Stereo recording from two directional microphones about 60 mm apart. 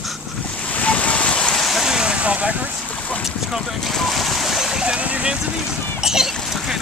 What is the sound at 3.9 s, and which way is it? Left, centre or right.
Boat, centre.